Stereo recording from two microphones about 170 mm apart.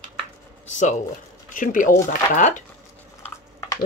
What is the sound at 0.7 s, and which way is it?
Speech, 45° left (ahead or behind).